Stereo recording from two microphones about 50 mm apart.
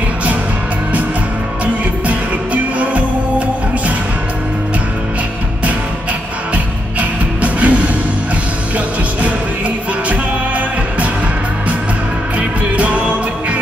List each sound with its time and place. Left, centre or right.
2.0 s music: right
6.5 s music: right
12.4 s music: right